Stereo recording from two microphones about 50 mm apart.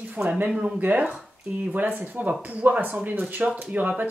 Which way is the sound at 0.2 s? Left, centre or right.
Right.